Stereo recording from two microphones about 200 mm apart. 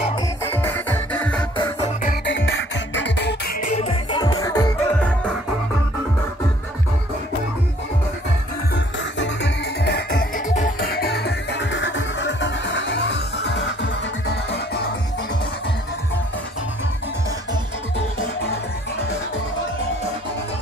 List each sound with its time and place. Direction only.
0.4 s music: 10° left (ahead or behind)
2.2 s music: 65° left (ahead or behind)
3.6 s music: 30° left (ahead or behind)
4.9 s music: 5° left (ahead or behind)
8.7 s music: 60° left (ahead or behind)